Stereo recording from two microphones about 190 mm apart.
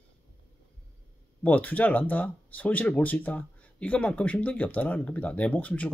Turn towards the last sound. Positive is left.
turn(degrees=5)  # may be behind; listen again after turning